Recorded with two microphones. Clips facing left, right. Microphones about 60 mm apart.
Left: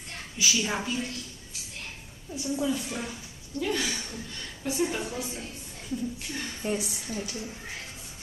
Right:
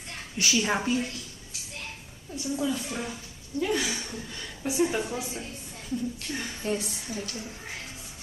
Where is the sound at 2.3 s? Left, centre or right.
Centre.